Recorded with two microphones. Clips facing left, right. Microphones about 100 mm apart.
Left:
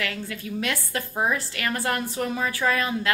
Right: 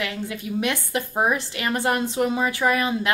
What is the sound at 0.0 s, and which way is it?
A woman's voice, 20° right (ahead or behind).